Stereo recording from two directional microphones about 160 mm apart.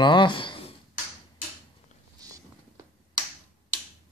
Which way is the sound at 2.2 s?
25° right (ahead or behind).